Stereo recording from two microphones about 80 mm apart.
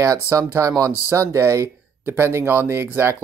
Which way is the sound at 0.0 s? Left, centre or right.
Right.